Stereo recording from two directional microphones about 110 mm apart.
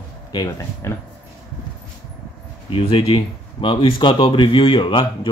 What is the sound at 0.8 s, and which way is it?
Speech, 25° left (ahead or behind).